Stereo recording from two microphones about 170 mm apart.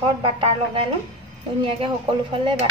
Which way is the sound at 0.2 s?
30° right (ahead or behind).